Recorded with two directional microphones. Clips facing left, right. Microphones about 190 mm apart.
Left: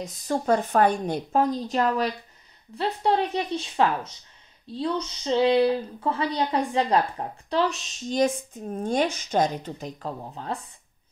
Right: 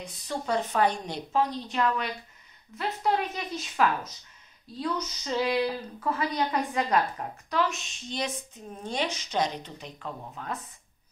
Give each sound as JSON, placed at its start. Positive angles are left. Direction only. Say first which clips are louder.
{"t": 0.0, "sound": "a woman's voice", "louder": "left 7 dB", "side_deg": 45}
{"t": 9.8, "sound": "speech", "louder": "left 5 dB", "side_deg": 40}